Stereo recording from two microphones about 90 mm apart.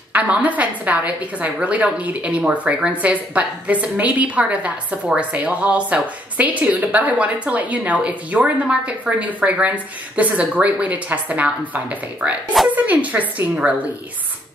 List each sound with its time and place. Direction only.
0.1 s a woman's voice: 15° right (ahead or behind)